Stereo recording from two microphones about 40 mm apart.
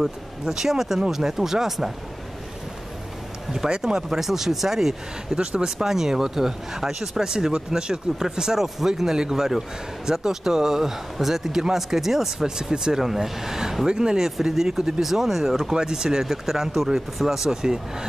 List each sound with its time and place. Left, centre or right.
0.0 s speech: centre
3.5 s speech: centre
5.4 s speech: right
5.9 s speech: centre